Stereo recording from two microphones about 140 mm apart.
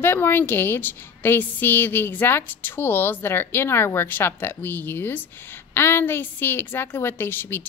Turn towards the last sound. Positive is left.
turn(degrees=15)  # may be behind; listen again after turning